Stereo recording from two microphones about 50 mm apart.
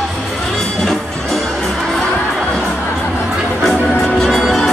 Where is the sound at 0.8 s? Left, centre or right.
Centre.